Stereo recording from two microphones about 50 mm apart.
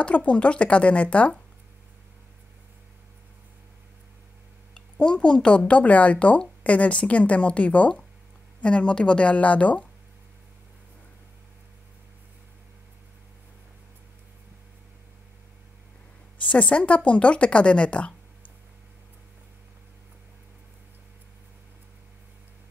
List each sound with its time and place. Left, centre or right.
0.0 s a woman's voice: left
4.7 s a woman's voice: centre
16.3 s a woman's voice: left